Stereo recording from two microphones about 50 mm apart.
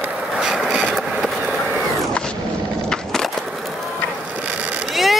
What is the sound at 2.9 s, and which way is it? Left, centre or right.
Skateboard, centre.